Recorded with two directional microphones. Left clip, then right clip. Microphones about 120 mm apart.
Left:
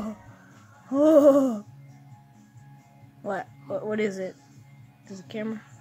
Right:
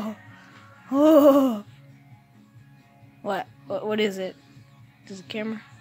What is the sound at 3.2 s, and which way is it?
Speech, 15° left (ahead or behind).